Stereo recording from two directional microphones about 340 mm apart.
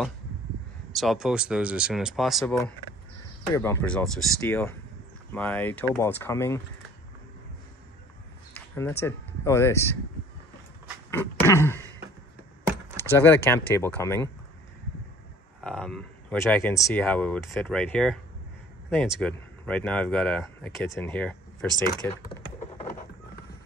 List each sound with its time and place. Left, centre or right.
0.9 s speech: centre
8.7 s speech: centre
11.1 s a sound: centre
12.9 s speech: centre
15.6 s speech: centre